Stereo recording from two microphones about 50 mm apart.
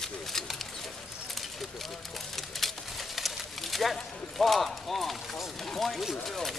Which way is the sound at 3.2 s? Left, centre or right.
Centre.